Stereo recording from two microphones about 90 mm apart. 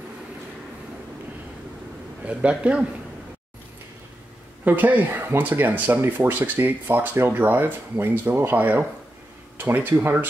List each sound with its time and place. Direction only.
2.2 s a man's voice: 15° right (ahead or behind)
4.6 s speech: 20° right (ahead or behind)